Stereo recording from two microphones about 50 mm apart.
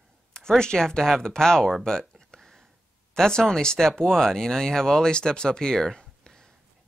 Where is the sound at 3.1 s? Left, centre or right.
Centre.